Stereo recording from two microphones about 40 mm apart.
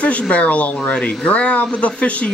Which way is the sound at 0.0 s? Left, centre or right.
Left.